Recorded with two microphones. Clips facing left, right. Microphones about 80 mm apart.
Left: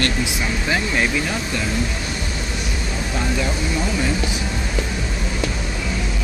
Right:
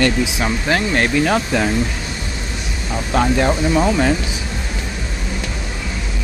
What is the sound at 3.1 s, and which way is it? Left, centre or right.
Speech, right.